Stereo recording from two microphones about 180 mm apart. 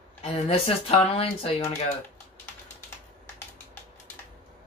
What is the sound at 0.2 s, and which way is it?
Speech, 35° left (ahead or behind).